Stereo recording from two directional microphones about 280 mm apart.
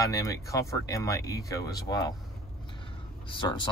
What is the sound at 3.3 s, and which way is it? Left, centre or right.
Speech, centre.